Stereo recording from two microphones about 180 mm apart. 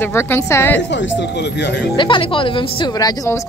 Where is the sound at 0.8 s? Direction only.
80° left.